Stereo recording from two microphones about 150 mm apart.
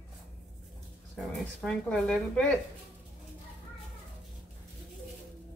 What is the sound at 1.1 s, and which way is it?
Speech, centre (ahead or behind).